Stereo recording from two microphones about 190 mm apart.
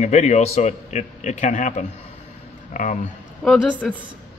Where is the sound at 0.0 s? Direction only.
35° left (ahead or behind).